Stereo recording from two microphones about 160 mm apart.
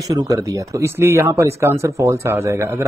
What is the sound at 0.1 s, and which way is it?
Speech, 20° right (ahead or behind).